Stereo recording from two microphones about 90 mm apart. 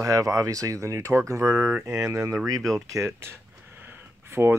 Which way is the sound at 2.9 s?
30° right (ahead or behind).